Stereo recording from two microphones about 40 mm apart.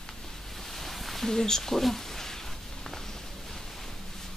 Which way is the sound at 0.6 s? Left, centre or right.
Centre.